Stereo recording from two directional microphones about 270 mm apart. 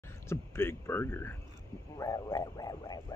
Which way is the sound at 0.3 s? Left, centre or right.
Centre.